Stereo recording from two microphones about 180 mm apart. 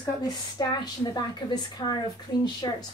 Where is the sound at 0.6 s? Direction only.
20° left (ahead or behind).